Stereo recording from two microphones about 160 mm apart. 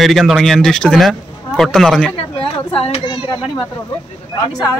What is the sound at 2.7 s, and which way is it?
Speech, 35° left (ahead or behind).